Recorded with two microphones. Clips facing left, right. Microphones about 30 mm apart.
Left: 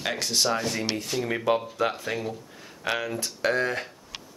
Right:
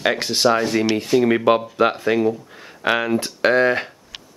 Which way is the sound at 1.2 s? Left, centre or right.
Right.